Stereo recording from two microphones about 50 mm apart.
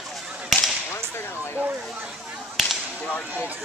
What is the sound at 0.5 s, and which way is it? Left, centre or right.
Whip, centre.